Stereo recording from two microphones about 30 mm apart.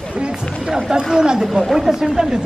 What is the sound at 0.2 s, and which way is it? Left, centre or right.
Speech, right.